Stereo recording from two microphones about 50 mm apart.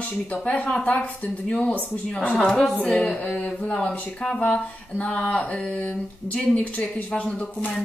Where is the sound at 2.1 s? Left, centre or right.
Centre.